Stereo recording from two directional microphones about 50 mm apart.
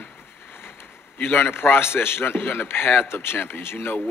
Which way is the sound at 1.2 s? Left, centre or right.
Left.